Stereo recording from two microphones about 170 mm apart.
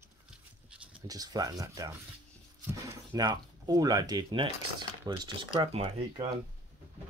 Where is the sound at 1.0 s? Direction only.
20° right (ahead or behind).